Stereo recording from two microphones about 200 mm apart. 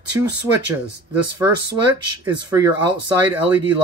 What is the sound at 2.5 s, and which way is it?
Speech, 20° right (ahead or behind).